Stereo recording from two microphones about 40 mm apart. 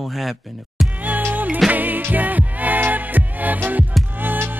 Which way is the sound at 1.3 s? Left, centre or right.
Right.